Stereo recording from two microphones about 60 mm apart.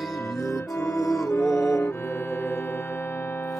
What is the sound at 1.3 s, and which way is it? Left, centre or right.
Music, left.